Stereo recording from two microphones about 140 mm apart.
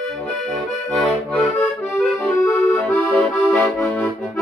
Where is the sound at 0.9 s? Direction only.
Centre (ahead or behind).